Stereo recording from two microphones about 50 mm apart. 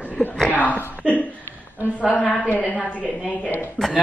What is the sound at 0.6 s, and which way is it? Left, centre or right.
Speech, left.